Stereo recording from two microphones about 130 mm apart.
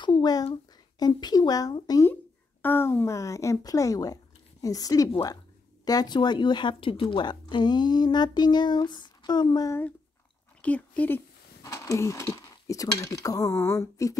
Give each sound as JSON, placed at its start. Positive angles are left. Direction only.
{"t": 0.0, "sound": "a sound", "side_deg": 35}
{"t": 0.9, "sound": "a woman's voice", "side_deg": 30}
{"t": 2.6, "sound": "a woman's voice", "side_deg": 15}
{"t": 9.7, "sound": "speech", "side_deg": 15}